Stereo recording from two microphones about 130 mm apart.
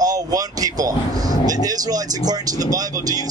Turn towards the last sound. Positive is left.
turn(degrees=-30)  # may be behind; listen again after turning